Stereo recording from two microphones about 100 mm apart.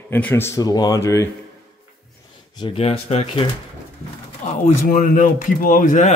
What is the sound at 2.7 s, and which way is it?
Speech, 80° left.